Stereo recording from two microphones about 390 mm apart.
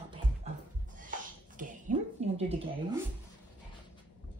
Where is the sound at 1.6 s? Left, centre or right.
Centre.